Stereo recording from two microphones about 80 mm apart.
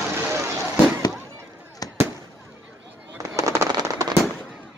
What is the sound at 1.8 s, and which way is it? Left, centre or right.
Fireworks, left.